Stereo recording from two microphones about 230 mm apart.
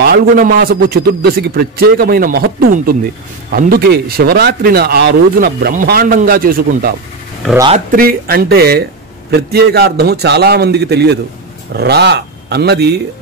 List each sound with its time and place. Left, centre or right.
0.0 s a man's voice: right